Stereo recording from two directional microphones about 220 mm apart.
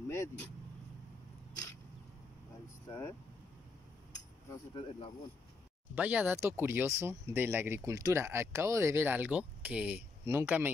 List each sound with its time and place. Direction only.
0.1 s speech: 15° left (ahead or behind)
2.9 s speech: 10° left (ahead or behind)
4.5 s speech: 20° left (ahead or behind)
5.9 s speech: 5° right (ahead or behind)